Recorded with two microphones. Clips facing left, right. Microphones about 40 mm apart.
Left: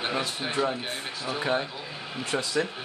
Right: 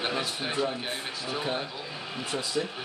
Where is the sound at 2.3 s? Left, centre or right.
Left.